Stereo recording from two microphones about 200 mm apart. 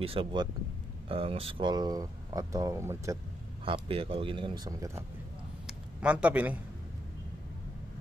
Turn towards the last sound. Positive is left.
turn(degrees=-5)  # may be behind; listen again after turning